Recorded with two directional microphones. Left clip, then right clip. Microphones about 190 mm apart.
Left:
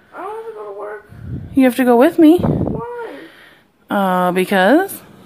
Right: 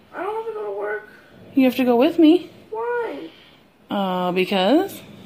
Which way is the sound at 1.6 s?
25° left (ahead or behind).